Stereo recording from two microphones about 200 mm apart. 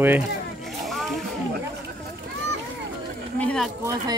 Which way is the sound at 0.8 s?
Centre (ahead or behind).